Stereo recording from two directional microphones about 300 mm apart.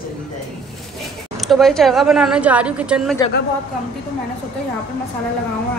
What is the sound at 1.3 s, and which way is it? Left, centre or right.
A woman's voice, centre.